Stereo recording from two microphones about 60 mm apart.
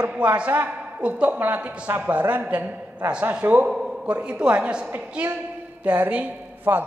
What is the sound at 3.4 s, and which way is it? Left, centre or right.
Speech, right.